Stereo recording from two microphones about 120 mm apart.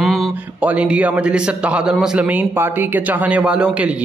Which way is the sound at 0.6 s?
10° right (ahead or behind).